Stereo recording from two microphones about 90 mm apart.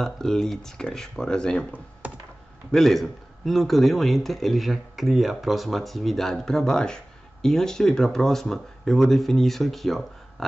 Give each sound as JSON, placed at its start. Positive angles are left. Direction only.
{"t": 0.0, "sound": "a man's voice", "side_deg": 5}
{"t": 2.0, "sound": "computer keyboard", "side_deg": -15}
{"t": 2.7, "sound": "a man's voice", "side_deg": 0}